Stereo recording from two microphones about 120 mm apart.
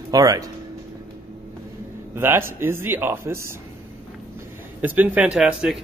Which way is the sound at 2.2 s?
20° right (ahead or behind).